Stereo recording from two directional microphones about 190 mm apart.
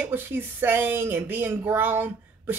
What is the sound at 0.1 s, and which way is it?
Speech, 10° right (ahead or behind).